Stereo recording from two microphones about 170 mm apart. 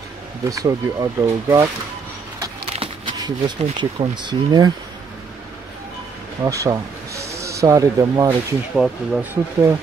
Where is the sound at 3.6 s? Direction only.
30° right (ahead or behind).